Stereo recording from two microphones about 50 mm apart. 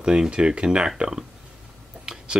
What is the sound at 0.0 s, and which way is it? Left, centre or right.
Speech, centre.